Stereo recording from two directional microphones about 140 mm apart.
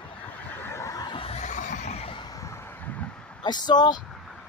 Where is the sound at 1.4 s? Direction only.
60° left (ahead or behind).